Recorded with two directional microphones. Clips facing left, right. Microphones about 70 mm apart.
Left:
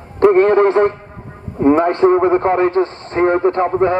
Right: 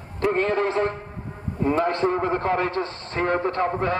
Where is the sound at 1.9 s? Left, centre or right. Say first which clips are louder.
Left 10 dB; left.